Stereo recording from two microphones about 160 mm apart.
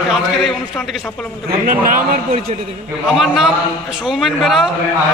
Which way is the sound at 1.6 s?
60° right (ahead or behind).